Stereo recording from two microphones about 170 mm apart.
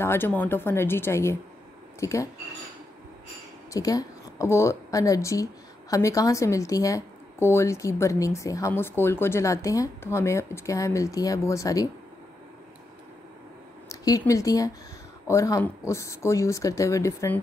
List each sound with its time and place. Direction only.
0.0 s speech: 15° left (ahead or behind)
3.7 s speech: 20° left (ahead or behind)
13.8 s speech: 20° left (ahead or behind)